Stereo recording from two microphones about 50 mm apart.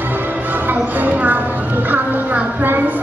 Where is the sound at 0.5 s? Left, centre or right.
Right.